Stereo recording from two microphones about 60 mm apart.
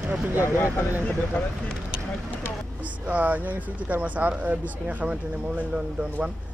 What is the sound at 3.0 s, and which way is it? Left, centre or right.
Speech, right.